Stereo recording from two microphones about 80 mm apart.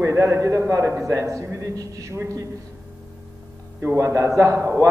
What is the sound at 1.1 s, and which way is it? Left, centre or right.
A man's voice, right.